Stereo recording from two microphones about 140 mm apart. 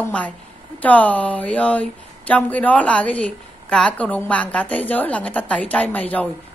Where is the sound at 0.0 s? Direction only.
10° left (ahead or behind).